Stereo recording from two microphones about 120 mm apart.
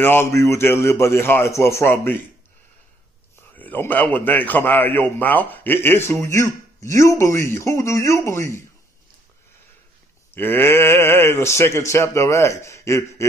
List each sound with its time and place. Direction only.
0.0 s a man's voice: 20° left (ahead or behind)
3.5 s a man's voice: 15° left (ahead or behind)
10.3 s a man's voice: 20° left (ahead or behind)